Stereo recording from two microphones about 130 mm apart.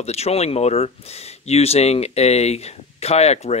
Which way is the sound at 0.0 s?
55° left (ahead or behind).